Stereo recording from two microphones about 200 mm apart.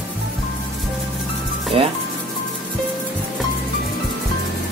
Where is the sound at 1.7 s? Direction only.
30° right (ahead or behind).